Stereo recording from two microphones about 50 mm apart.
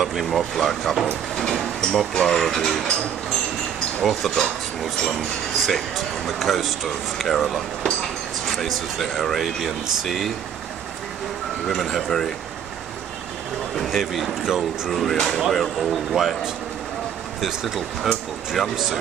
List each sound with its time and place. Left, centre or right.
0.0 s speech: centre
4.0 s speech: centre
5.6 s speech: centre
11.6 s speech: centre
13.8 s speech: centre
14.9 s speech: centre
17.4 s speech: centre